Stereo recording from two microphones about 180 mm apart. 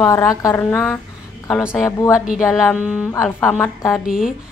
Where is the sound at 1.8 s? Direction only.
15° left (ahead or behind).